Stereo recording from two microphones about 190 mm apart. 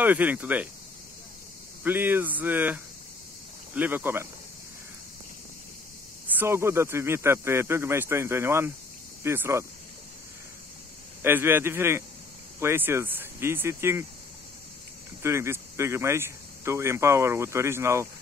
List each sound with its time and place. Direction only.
0.0 s speech: 10° right (ahead or behind)
1.8 s speech: 10° right (ahead or behind)
6.3 s speech: 15° right (ahead or behind)
11.2 s speech: 10° right (ahead or behind)
15.2 s speech: 15° right (ahead or behind)